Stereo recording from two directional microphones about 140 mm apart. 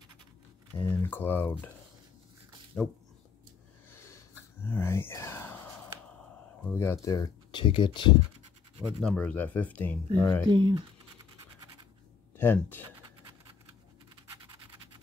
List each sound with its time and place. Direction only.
0.8 s speech: 15° left (ahead or behind)
2.8 s speech: 5° left (ahead or behind)
3.9 s whispering: 15° left (ahead or behind)
6.6 s speech: 15° left (ahead or behind)
7.2 s speech: 35° left (ahead or behind)
9.0 s speech: 10° left (ahead or behind)
10.5 s speech: 35° right (ahead or behind)
12.4 s speech: 15° left (ahead or behind)